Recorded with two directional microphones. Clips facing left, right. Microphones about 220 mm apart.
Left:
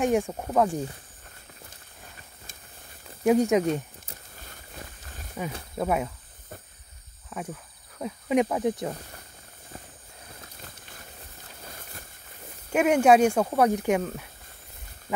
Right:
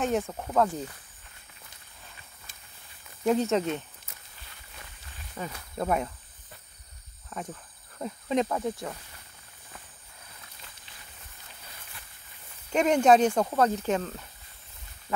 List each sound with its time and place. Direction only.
0.0 s speech: 15° left (ahead or behind)
3.3 s speech: 10° left (ahead or behind)
4.1 s a sound: 45° left (ahead or behind)
5.8 s speech: 5° left (ahead or behind)
7.3 s speech: 5° left (ahead or behind)
10.4 s a sound: 45° left (ahead or behind)
11.6 s boat: 45° left (ahead or behind)
12.7 s speech: 10° left (ahead or behind)